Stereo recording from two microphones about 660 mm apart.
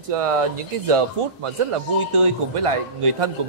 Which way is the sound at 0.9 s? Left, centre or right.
Right.